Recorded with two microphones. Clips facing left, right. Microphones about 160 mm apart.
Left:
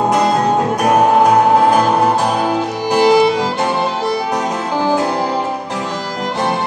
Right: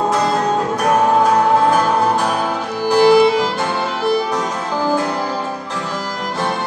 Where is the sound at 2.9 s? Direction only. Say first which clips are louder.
Right 1 dB; 20° left (ahead or behind).